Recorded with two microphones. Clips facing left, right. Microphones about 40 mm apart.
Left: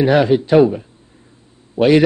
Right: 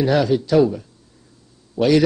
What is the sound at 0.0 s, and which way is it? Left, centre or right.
A man's voice, left.